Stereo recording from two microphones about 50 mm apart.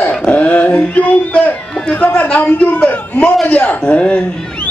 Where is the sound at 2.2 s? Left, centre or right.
Left.